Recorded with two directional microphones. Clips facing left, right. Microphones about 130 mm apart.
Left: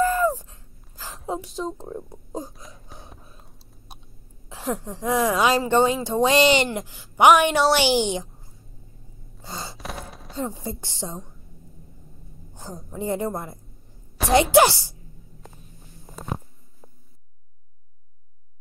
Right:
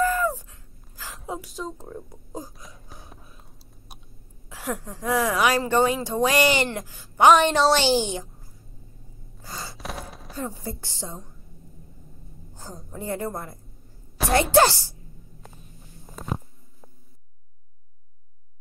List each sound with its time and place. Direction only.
0.0 s a sound: 25° left (ahead or behind)
0.5 s gasp: 25° left (ahead or behind)
1.3 s speech: 25° left (ahead or behind)
2.5 s a sound: centre (ahead or behind)
3.9 s a sound: 25° left (ahead or behind)
4.5 s a woman's voice: 25° left (ahead or behind)
9.4 s gasp: 25° left (ahead or behind)
9.8 s chopping: centre (ahead or behind)
10.3 s speech: 20° left (ahead or behind)
12.9 s a woman's voice: 20° left (ahead or behind)